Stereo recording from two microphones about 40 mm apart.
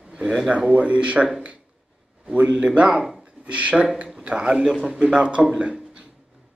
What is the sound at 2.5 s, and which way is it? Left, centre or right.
Speech, right.